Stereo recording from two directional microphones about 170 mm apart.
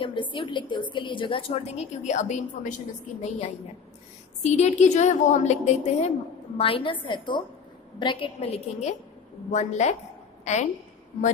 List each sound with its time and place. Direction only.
0.0 s a woman's voice: 30° left (ahead or behind)